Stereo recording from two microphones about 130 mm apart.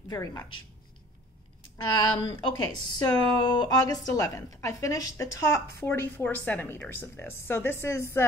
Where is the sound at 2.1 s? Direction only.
35° left (ahead or behind).